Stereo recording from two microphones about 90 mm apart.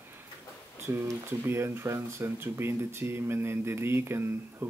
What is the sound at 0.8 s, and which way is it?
Speech, 30° right (ahead or behind).